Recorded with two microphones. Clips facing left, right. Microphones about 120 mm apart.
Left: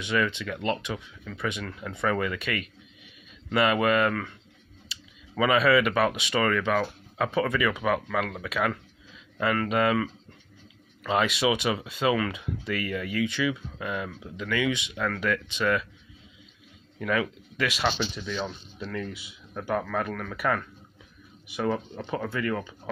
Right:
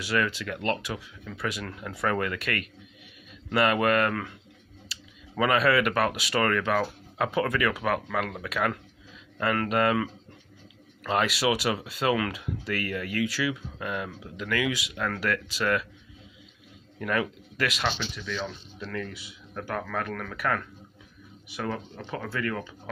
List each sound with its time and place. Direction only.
0.0 s speech: 5° right (ahead or behind)
17.0 s speech: centre (ahead or behind)
18.1 s speech: 20° left (ahead or behind)
18.9 s speech: 10° left (ahead or behind)